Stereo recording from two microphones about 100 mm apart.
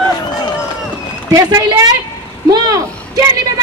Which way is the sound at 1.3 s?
35° right (ahead or behind).